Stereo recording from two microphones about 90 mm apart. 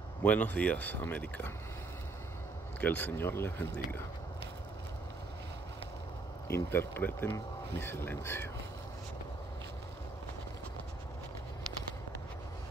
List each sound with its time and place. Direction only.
0.2 s speech: 15° left (ahead or behind)
2.8 s speech: 20° left (ahead or behind)
6.4 s speech: 25° left (ahead or behind)